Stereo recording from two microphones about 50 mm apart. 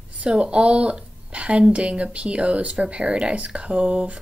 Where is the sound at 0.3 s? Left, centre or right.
Right.